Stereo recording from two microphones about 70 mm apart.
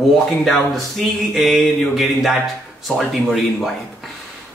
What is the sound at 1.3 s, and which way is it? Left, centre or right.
Speech, centre.